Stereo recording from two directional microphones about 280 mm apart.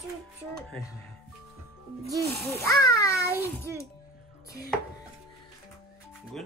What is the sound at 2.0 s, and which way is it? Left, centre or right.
Speech, right.